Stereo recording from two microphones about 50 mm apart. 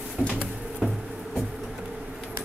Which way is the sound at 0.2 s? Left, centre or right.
Right.